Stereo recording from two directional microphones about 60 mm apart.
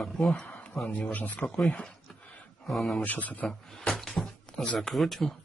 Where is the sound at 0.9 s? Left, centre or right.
Left.